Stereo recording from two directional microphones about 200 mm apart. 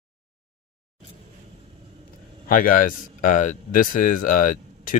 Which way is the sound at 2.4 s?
45° left (ahead or behind).